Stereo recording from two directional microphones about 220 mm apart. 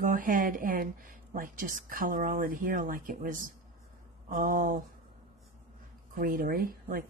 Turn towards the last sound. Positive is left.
turn(degrees=-40)  # may be behind; listen again after turning